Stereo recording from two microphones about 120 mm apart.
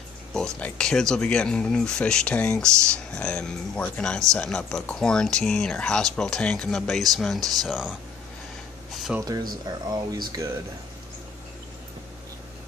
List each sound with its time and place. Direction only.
0.6 s speech: 5° left (ahead or behind)
9.2 s speech: 35° right (ahead or behind)